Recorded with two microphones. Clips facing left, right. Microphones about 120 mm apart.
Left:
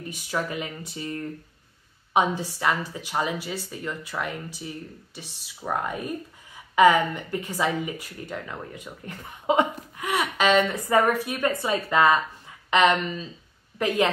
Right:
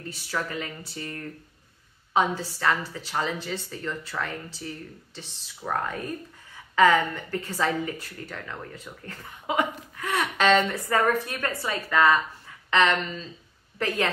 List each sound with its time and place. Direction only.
0.0 s speech: 15° left (ahead or behind)
10.0 s speech: 10° left (ahead or behind)
10.7 s speech: 15° left (ahead or behind)